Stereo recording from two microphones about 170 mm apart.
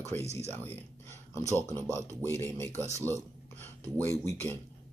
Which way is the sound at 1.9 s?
15° left (ahead or behind).